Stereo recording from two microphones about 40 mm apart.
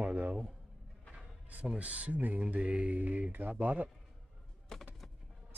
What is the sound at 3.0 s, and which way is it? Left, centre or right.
Speech, right.